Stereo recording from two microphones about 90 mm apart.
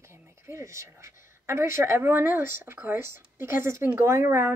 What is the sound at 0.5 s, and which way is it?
A woman's voice, 30° right (ahead or behind).